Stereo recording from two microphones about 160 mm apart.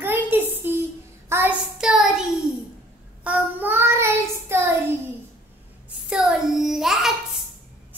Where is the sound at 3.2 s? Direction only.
10° right (ahead or behind).